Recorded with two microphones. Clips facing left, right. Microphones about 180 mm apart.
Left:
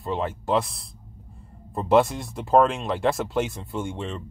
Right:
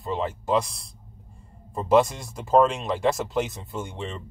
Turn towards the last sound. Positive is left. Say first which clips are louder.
# left 3 dB
turn(degrees=0)  # may be behind; listen again after turning